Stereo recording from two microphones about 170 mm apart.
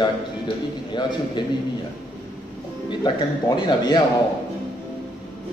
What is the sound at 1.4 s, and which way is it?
Speech, 25° left (ahead or behind).